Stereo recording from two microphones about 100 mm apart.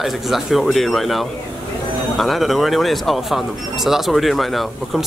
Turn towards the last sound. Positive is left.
turn(degrees=0)  # may be behind; listen again after turning